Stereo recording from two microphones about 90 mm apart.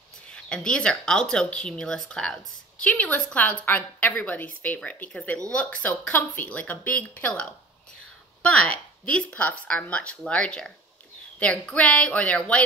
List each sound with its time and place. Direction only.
0.3 s a woman's voice: 10° left (ahead or behind)